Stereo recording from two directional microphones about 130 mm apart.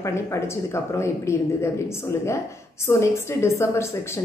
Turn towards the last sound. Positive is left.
turn(degrees=20)  # may be behind; listen again after turning